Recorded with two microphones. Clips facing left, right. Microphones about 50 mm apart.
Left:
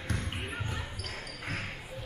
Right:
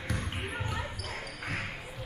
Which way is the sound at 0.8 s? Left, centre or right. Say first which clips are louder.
Right 3 dB; centre.